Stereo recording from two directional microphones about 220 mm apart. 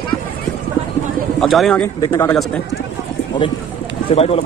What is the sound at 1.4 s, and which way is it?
Speech, centre (ahead or behind).